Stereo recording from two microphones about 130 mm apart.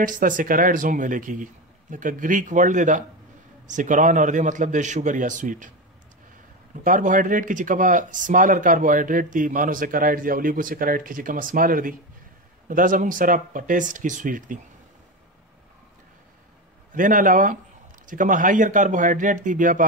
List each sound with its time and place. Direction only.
0.0 s a man's voice: 90° right
6.7 s speech: 90° right
16.9 s a man's voice: 90° right